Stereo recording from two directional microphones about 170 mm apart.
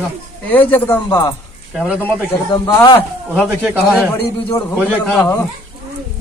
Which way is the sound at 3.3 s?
10° right (ahead or behind).